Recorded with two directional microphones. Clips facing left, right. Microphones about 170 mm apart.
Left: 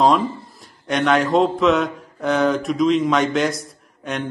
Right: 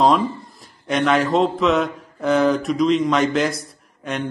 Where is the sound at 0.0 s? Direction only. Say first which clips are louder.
Even; centre (ahead or behind).